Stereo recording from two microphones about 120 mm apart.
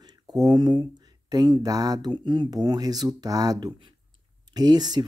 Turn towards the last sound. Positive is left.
turn(degrees=-35)  # may be behind; listen again after turning